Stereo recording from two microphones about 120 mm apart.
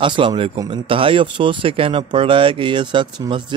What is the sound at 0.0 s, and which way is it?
Speech, 45° right (ahead or behind).